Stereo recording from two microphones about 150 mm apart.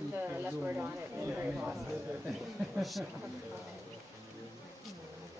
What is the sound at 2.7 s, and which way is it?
Speech, centre (ahead or behind).